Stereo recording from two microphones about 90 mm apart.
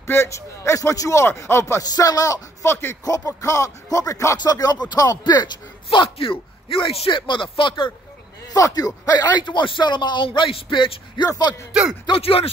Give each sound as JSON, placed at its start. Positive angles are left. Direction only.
{"t": 0.0, "sound": "speech", "side_deg": 30}
{"t": 1.8, "sound": "speech", "side_deg": 45}
{"t": 4.4, "sound": "speech", "side_deg": 45}
{"t": 5.9, "sound": "speech", "side_deg": 85}
{"t": 8.5, "sound": "speech", "side_deg": 40}
{"t": 11.2, "sound": "speech", "side_deg": 45}
{"t": 11.8, "sound": "speech", "side_deg": -10}
{"t": 12.1, "sound": "speech", "side_deg": 90}